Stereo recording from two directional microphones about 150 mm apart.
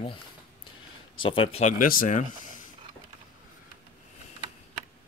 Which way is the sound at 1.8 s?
70° left (ahead or behind).